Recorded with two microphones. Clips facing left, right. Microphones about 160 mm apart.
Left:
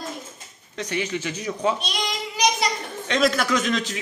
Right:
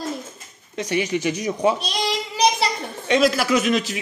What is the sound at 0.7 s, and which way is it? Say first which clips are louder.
Speech: right 4 dB; 10° right (ahead or behind).